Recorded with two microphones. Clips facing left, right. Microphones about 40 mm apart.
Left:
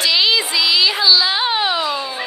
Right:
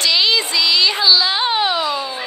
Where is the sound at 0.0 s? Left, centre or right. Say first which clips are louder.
Even; centre.